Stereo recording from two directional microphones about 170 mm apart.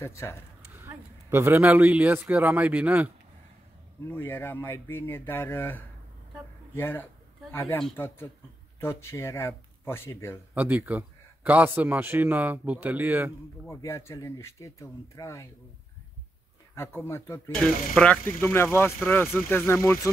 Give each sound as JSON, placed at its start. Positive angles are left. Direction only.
{"t": 0.0, "sound": "speech", "side_deg": 15}
{"t": 0.7, "sound": "a man's voice", "side_deg": -15}
{"t": 4.1, "sound": "speech", "side_deg": 10}
{"t": 10.5, "sound": "a man's voice", "side_deg": -10}
{"t": 13.7, "sound": "speech", "side_deg": 15}
{"t": 16.7, "sound": "speech", "side_deg": 15}